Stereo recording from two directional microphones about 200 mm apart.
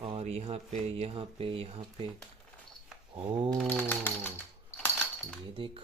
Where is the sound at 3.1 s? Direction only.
30° right (ahead or behind).